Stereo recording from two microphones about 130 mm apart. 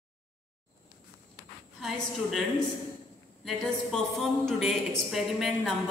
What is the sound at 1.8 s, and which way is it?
Speech, centre (ahead or behind).